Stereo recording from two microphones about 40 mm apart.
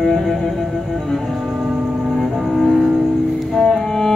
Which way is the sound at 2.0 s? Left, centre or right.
Centre.